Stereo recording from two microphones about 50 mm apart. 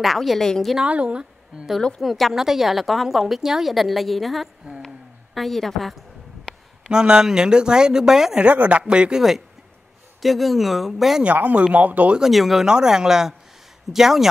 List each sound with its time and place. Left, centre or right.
0.0 s a woman's voice: centre
0.4 s a woman's voice: centre
0.8 s speech: right
2.0 s a woman's voice: centre
4.8 s a sound: centre
6.9 s speech: centre
8.5 s speech: right
10.2 s a woman's voice: centre
11.7 s speech: right
12.2 s a woman's voice: centre
12.6 s speech: centre